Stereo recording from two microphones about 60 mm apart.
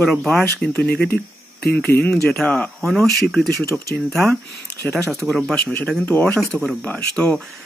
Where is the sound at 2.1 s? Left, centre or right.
Centre.